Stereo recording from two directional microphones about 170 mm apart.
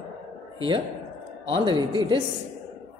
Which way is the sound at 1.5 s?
30° right (ahead or behind).